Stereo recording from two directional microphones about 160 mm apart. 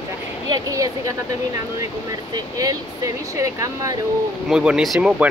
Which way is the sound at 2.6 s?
20° right (ahead or behind).